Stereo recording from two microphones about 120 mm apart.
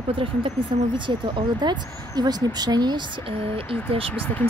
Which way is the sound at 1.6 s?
35° right (ahead or behind).